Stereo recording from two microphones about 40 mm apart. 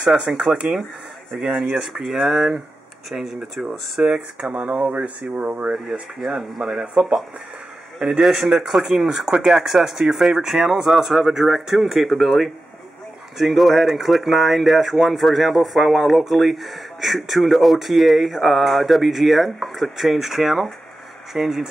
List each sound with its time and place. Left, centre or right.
0.1 s speech: centre
1.4 s speech: centre
4.0 s speech: right
4.8 s speech: right
6.1 s speech: centre
8.2 s speech: centre